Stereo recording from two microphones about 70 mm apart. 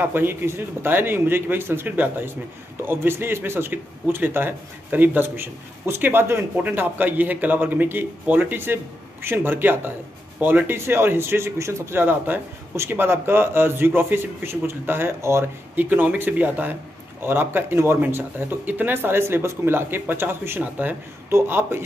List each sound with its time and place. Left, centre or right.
0.0 s speech: right
15.7 s speech: right